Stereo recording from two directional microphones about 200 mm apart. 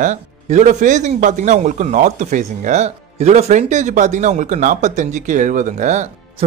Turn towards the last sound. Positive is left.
turn(degrees=-35)  # may be behind; listen again after turning